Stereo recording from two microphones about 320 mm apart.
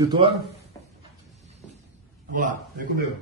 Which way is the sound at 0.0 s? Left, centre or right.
Centre.